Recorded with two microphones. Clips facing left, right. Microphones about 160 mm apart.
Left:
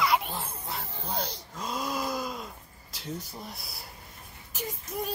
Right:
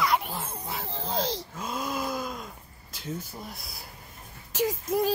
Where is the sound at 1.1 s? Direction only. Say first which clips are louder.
Right 5 dB; 90° right.